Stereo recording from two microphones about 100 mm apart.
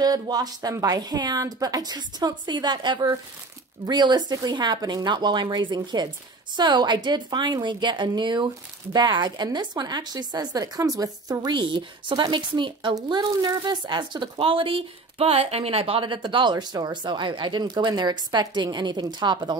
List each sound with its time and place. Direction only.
0.0 s a woman's voice: 40° right (ahead or behind)